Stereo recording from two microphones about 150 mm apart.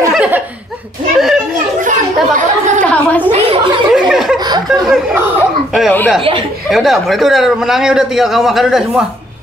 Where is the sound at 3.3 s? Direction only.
40° right (ahead or behind).